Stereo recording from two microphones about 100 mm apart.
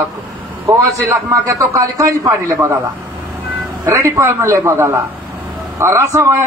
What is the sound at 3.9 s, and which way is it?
A man's voice, 30° right (ahead or behind).